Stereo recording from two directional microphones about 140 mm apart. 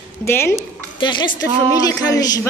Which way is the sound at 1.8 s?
25° left (ahead or behind).